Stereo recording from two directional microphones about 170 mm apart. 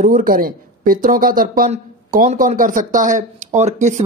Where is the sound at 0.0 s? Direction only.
55° right (ahead or behind).